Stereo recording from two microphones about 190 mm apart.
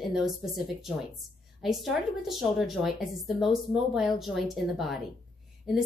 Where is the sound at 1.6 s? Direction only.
Centre (ahead or behind).